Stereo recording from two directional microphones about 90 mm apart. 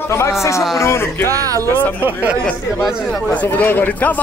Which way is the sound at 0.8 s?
30° left (ahead or behind).